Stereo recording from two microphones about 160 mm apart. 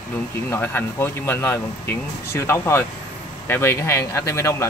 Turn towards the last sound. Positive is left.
turn(degrees=15)  # may be behind; listen again after turning